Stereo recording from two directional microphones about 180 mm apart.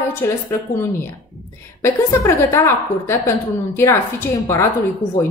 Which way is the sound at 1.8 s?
15° left (ahead or behind).